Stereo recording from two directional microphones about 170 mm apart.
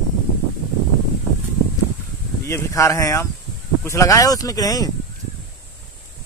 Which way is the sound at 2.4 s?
15° left (ahead or behind).